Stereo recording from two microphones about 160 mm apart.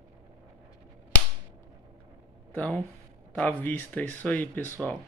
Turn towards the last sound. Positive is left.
turn(degrees=10)  # may be behind; listen again after turning